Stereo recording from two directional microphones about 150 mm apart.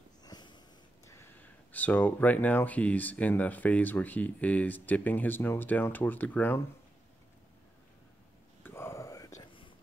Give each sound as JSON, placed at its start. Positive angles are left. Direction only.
{"t": 0.2, "sound": "sniff", "side_deg": 30}
{"t": 1.0, "sound": "speech", "side_deg": 15}
{"t": 8.6, "sound": "whispering", "side_deg": 15}